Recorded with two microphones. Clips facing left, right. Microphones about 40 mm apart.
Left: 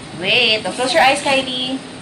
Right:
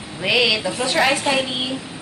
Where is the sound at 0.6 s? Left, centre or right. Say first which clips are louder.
Left 5 dB; centre.